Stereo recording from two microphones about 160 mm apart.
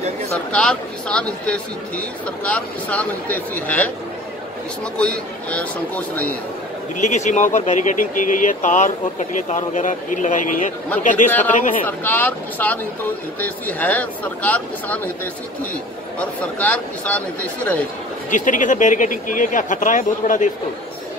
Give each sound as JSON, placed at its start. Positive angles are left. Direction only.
{"t": 0.5, "sound": "speech", "side_deg": 5}
{"t": 4.9, "sound": "speech", "side_deg": 5}
{"t": 7.0, "sound": "speech", "side_deg": 50}
{"t": 11.2, "sound": "speech", "side_deg": 10}
{"t": 16.2, "sound": "speech", "side_deg": 10}
{"t": 18.3, "sound": "speech", "side_deg": 55}